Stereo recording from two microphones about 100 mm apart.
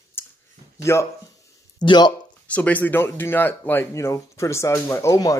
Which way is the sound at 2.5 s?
15° left (ahead or behind).